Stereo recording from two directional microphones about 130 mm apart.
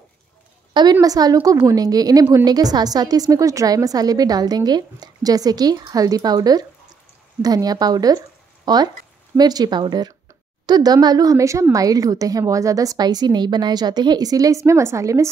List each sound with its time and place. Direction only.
1.0 s a woman's voice: 30° right (ahead or behind)